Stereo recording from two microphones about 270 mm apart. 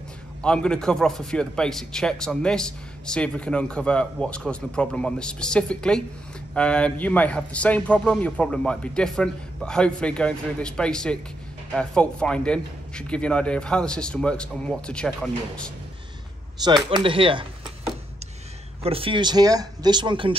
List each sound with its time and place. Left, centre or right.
0.4 s a man's voice: centre
16.6 s speech: centre
18.8 s speech: right